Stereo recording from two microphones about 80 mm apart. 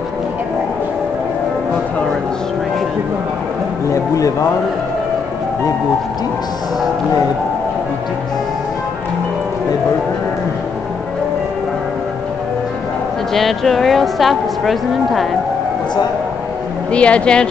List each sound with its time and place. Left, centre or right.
3.9 s speech: left
13.3 s a woman's voice: centre
16.9 s speech: centre